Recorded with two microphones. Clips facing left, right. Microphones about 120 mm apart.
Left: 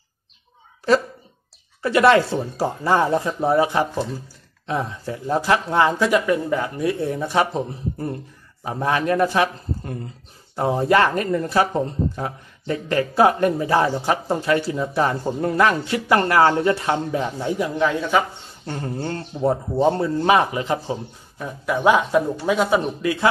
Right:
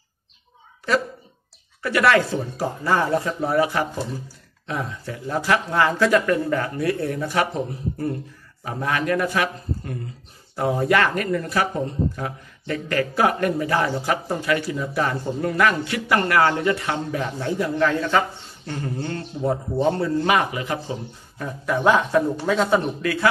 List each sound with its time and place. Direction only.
1.8 s speech: 25° left (ahead or behind)
18.7 s speech: 35° left (ahead or behind)
21.4 s a man's voice: 5° left (ahead or behind)